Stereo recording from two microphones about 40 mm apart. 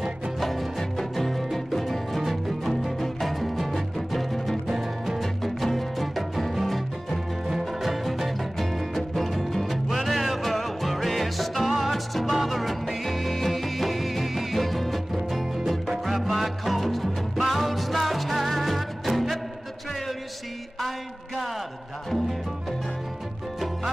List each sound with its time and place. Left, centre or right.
0.4 s music: centre
4.6 s music: centre
5.2 s music: centre